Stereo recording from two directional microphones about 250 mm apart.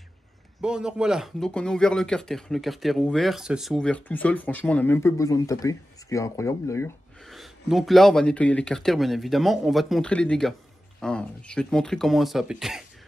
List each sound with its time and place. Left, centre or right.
0.6 s speech: centre
7.2 s speech: centre